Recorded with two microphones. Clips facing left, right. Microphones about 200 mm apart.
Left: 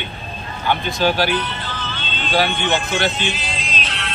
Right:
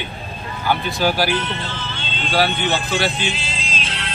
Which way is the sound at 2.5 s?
35° right (ahead or behind).